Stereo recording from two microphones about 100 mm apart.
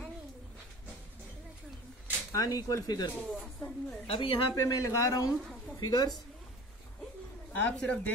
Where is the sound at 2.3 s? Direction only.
40° left (ahead or behind).